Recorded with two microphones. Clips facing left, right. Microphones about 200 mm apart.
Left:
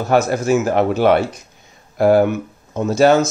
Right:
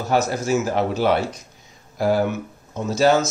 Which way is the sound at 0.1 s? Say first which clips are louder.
Left 5 dB; 55° left (ahead or behind).